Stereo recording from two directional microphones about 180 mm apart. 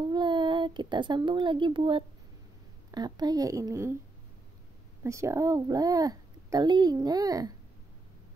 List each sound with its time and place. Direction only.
0.0 s a child's voice: 25° right (ahead or behind)
5.0 s a child's voice: 15° right (ahead or behind)